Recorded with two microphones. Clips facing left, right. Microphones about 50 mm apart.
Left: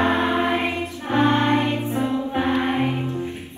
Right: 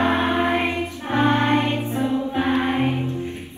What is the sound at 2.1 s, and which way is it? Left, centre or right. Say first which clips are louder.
Choir: right 1 dB; left.